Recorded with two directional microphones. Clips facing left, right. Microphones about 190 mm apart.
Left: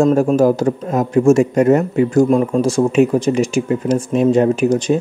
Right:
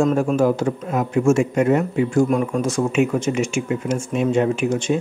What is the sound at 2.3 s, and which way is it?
A man's voice, 30° left (ahead or behind).